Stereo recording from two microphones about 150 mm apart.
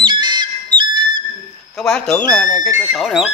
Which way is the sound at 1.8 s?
5° left (ahead or behind).